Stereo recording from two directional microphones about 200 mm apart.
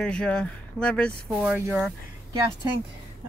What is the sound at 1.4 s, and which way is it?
Speech, 10° right (ahead or behind).